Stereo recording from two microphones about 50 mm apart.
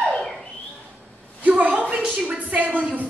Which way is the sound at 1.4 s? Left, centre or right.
Right.